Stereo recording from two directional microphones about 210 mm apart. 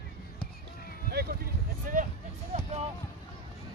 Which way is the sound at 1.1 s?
50° right (ahead or behind).